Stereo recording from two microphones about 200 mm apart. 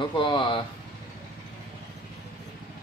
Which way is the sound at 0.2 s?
25° left (ahead or behind).